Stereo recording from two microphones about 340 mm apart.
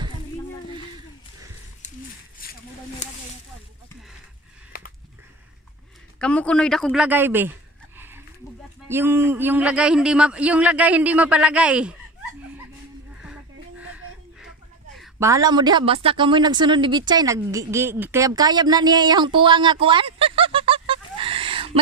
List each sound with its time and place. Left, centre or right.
2.4 s a sound: left
3.0 s snake: left
4.7 s a sound: left
6.1 s speech: centre
8.8 s speech: centre
13.2 s music: centre
15.0 s a woman's voice: centre